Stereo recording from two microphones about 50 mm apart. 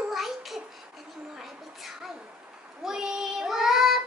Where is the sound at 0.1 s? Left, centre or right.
Centre.